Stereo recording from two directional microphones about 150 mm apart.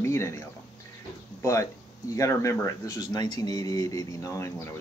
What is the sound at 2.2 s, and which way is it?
Speech, 20° left (ahead or behind).